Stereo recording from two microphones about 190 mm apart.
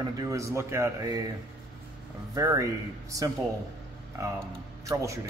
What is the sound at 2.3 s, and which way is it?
Speech, 15° right (ahead or behind).